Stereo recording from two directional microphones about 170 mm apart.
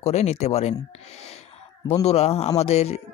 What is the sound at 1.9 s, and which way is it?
Speech, 40° left (ahead or behind).